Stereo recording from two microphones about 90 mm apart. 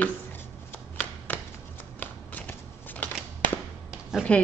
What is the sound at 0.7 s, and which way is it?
Shuffling cards, 20° left (ahead or behind).